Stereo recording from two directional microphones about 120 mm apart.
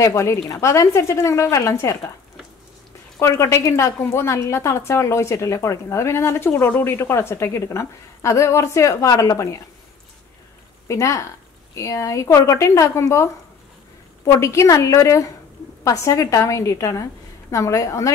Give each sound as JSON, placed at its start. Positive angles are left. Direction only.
{"t": 0.0, "sound": "a woman's voice", "side_deg": 25}
{"t": 3.2, "sound": "a woman's voice", "side_deg": 25}
{"t": 10.9, "sound": "a woman's voice", "side_deg": 25}